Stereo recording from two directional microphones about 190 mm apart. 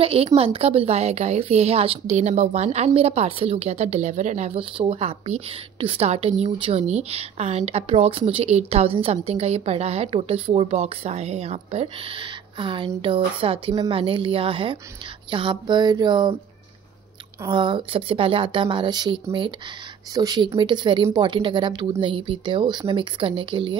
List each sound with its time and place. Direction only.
0.0 s a woman's voice: 30° right (ahead or behind)
17.5 s speech: 25° right (ahead or behind)